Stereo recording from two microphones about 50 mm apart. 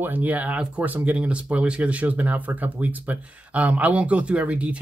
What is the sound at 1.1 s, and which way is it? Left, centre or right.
Speech, right.